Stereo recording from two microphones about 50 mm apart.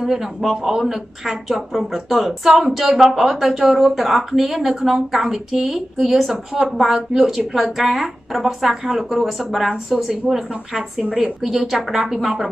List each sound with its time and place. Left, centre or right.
0.0 s a woman's voice: centre